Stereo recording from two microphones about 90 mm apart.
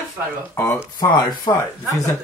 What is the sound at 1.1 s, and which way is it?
Speech, 45° left (ahead or behind).